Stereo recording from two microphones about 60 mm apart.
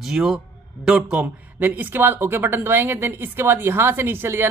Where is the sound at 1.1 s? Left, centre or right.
Right.